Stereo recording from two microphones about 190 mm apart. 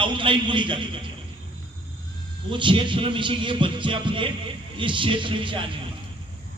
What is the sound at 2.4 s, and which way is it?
Speech, 25° right (ahead or behind).